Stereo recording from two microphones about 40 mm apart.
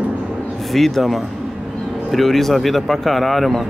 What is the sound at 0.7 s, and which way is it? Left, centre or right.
Speech, centre.